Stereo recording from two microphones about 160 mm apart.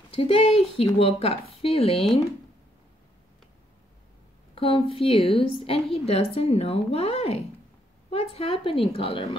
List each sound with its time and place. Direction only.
0.1 s speech: 35° left (ahead or behind)
4.6 s speech: 35° left (ahead or behind)